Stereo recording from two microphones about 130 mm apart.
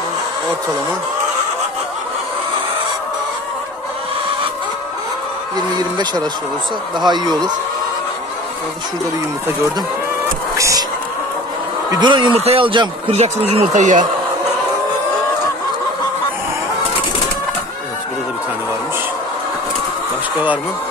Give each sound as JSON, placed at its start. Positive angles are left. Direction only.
{"t": 5.8, "sound": "speech", "side_deg": -30}
{"t": 10.5, "sound": "a sound", "side_deg": -25}
{"t": 11.9, "sound": "speech", "side_deg": -35}
{"t": 13.5, "sound": "speech", "side_deg": -60}